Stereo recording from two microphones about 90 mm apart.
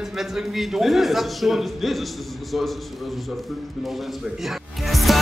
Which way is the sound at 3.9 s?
Centre (ahead or behind).